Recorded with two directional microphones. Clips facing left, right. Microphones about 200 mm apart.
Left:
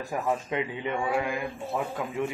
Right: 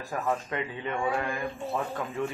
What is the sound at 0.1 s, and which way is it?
Speech, 20° left (ahead or behind).